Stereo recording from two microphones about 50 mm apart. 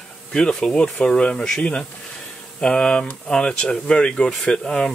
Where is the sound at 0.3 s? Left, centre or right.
Centre.